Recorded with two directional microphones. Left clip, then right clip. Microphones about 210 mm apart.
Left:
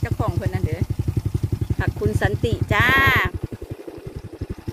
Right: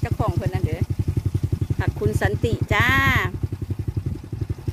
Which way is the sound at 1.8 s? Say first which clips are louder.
Left 1 dB; 10° right (ahead or behind).